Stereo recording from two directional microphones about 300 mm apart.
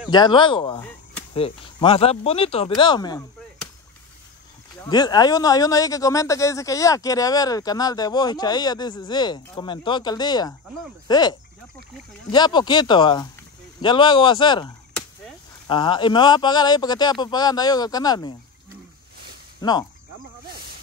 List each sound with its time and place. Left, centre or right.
0.1 s speech: centre
4.8 s speech: centre
19.6 s speech: centre